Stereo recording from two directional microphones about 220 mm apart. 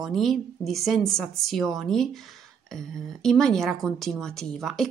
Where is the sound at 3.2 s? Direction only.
Centre (ahead or behind).